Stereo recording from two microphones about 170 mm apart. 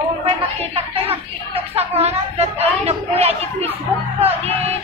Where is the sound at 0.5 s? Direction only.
35° right (ahead or behind).